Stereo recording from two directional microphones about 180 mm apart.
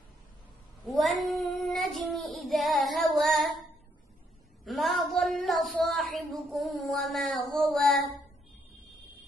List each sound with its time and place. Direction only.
0.8 s speech: centre (ahead or behind)
1.4 s child singing: centre (ahead or behind)
4.6 s child singing: centre (ahead or behind)
5.9 s a sound: centre (ahead or behind)
7.5 s child singing: centre (ahead or behind)